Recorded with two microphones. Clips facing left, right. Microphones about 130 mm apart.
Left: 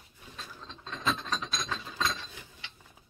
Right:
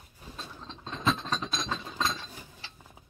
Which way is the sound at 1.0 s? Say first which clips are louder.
Right 3 dB; 30° right (ahead or behind).